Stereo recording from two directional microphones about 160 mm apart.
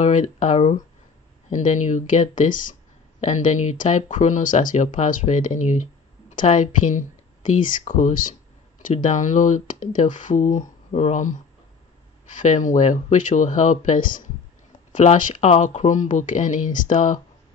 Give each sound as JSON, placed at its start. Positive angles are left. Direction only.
{"t": 0.0, "sound": "speech", "side_deg": 50}